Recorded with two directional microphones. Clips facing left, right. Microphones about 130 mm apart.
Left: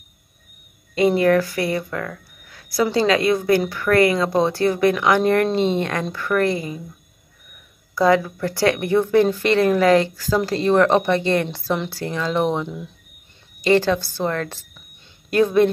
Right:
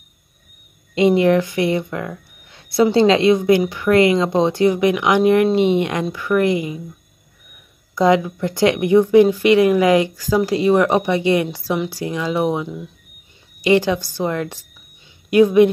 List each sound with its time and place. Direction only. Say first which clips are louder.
0.9 s speech: right 2 dB; 20° right (ahead or behind)
7.9 s speech: right 2 dB; 20° right (ahead or behind); by 12.9 s 5° right (ahead or behind)
13.7 s a woman's voice: right 1 dB; 15° right (ahead or behind)